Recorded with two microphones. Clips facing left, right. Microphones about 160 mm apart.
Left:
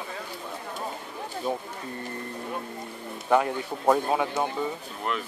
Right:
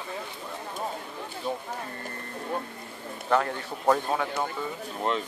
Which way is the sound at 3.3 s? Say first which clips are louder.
Left 3 dB; 15° left (ahead or behind).